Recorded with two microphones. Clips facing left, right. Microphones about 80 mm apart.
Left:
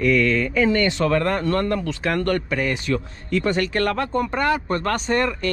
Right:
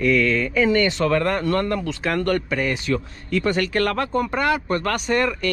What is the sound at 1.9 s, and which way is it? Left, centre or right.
Speech, centre.